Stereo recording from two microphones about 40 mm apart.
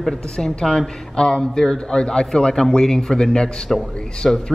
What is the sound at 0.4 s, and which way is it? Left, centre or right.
A man's voice, centre.